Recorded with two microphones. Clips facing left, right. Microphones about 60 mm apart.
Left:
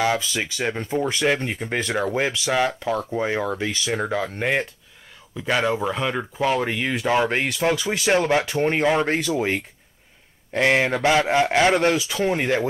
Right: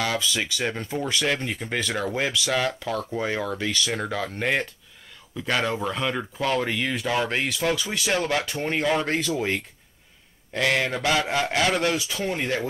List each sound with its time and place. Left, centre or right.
0.0 s speech: left